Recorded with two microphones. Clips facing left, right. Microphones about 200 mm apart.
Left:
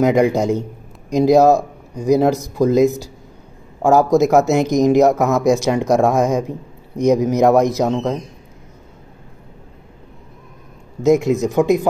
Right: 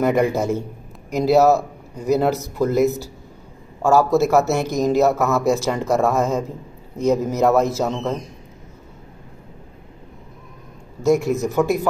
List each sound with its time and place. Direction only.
0.0 s speech: 15° left (ahead or behind)
11.0 s speech: 20° left (ahead or behind)